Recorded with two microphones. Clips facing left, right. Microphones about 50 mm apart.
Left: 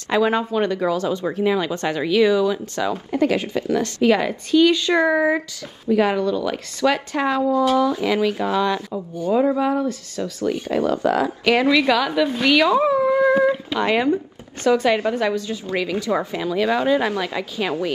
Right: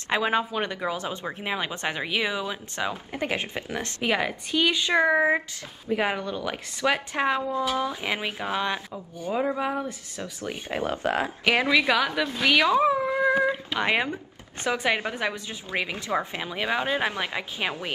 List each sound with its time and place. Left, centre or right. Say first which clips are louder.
0.1 s speech: left 6 dB; centre; by 11.3 s right
11.4 s speech: left 5 dB; centre
13.3 s a sound: left 6 dB; centre
13.7 s speech: left 6 dB; right